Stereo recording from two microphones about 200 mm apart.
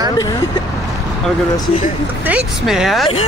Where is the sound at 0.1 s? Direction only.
20° left (ahead or behind).